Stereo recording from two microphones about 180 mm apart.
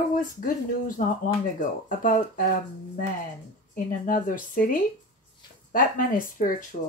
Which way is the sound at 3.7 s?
50° left (ahead or behind).